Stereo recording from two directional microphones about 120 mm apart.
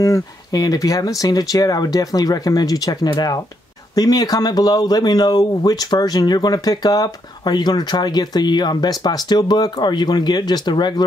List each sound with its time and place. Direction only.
0.0 s speech: 30° left (ahead or behind)